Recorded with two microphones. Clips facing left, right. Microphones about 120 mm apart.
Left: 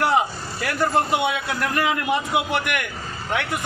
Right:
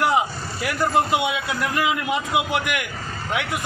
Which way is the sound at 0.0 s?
20° right (ahead or behind).